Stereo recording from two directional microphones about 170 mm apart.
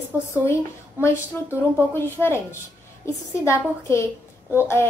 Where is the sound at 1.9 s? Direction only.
15° left (ahead or behind).